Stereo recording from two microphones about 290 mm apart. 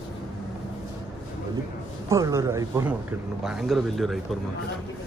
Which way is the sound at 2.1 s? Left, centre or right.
Centre.